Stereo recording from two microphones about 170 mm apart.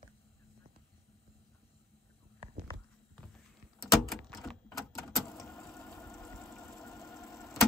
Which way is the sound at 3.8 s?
Centre (ahead or behind).